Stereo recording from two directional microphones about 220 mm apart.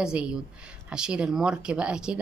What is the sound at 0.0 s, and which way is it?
Speech, 5° right (ahead or behind).